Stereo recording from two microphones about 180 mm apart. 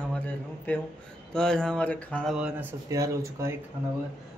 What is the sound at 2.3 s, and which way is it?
Speech, 5° right (ahead or behind).